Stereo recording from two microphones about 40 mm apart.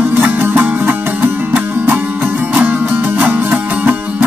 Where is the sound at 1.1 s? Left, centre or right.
Right.